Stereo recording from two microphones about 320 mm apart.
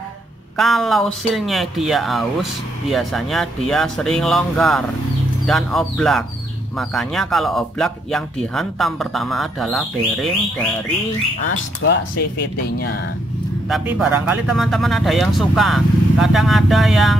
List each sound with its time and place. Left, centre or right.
0.6 s speech: centre
11.4 s speech: left
13.7 s speech: centre